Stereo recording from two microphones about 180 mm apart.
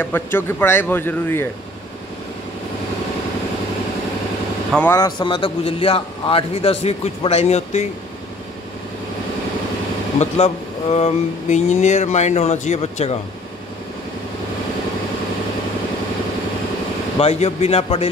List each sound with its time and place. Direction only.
0.0 s a man's voice: 10° left (ahead or behind)
4.7 s speech: 15° left (ahead or behind); by 7.8 s 35° left (ahead or behind)
10.1 s speech: 35° left (ahead or behind)
17.2 s speech: 35° left (ahead or behind)